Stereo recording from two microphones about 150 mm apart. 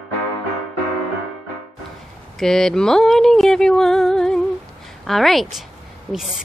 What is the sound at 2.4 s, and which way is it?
Speech, 5° left (ahead or behind).